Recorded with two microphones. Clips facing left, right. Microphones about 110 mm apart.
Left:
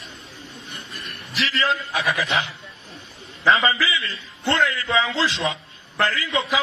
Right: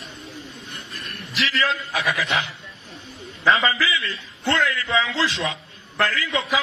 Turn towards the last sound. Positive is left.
turn(degrees=25)  # may be behind; listen again after turning